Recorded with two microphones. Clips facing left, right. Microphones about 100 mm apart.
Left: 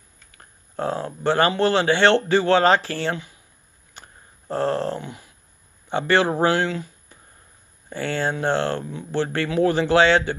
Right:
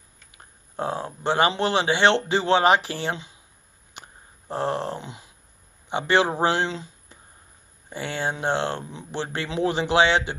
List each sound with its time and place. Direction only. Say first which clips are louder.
0.4 s speech: left 2 dB; 20° right (ahead or behind)
3.9 s a sound: right 1 dB; 20° right (ahead or behind)
5.9 s speech: left 2 dB; 20° right (ahead or behind)